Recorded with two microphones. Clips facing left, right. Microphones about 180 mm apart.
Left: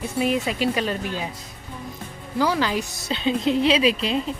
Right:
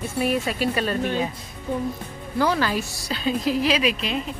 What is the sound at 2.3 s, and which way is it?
Speech, 15° left (ahead or behind).